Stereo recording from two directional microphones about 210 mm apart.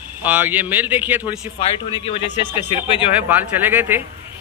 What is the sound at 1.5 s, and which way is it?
A man's voice, 25° left (ahead or behind).